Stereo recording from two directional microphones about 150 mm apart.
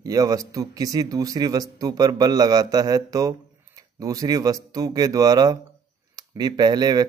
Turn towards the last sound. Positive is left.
turn(degrees=-25)  # may be behind; listen again after turning